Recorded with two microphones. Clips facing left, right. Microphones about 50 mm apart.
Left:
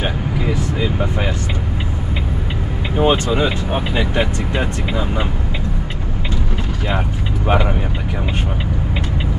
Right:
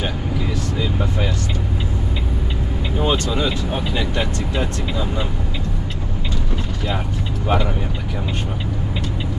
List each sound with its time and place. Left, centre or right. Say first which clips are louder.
0.0 s vehicle: left 3 dB; left
3.0 s speech: left 5 dB; left
7.4 s speech: left 3 dB; left